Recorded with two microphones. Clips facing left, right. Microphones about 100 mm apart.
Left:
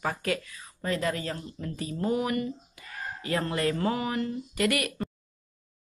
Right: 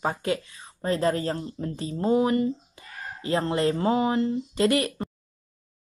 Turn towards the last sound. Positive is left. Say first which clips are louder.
# right 5 dB
turn(degrees=-30)  # may be behind; listen again after turning